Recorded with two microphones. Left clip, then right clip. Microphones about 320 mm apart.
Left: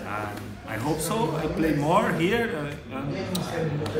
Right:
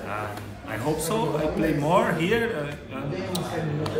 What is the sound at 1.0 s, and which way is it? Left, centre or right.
A man's voice, centre.